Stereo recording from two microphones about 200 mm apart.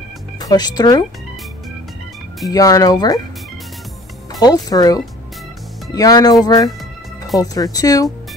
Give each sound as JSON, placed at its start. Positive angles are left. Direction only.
{"t": 0.4, "sound": "speech", "side_deg": 20}
{"t": 2.5, "sound": "speech", "side_deg": 20}
{"t": 4.3, "sound": "speech", "side_deg": 20}